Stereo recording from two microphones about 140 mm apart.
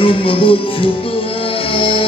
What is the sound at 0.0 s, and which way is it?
Music, 40° left (ahead or behind).